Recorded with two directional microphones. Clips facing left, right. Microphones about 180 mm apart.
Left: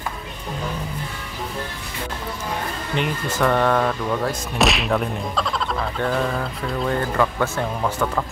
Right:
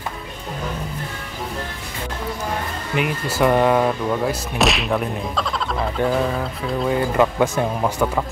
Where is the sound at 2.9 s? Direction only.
10° right (ahead or behind).